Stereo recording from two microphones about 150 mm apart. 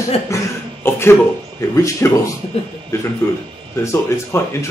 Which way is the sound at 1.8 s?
20° left (ahead or behind).